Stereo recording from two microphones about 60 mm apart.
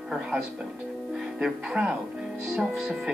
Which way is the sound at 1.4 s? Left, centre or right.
Centre.